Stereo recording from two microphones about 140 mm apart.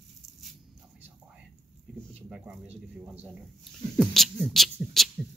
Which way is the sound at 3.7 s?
5° left (ahead or behind).